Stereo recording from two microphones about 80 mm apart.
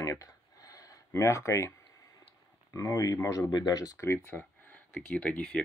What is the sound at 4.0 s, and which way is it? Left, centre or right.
Speech, left.